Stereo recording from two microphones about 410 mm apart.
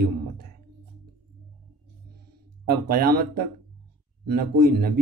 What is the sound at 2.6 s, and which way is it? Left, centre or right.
Speech, right.